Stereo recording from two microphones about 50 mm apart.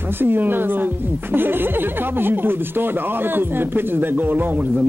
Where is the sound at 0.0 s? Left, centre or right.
Right.